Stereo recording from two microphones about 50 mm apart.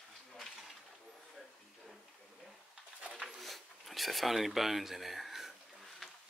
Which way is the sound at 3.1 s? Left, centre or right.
Centre.